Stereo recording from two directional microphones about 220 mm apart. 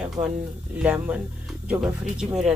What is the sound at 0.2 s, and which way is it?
Speech, 30° right (ahead or behind).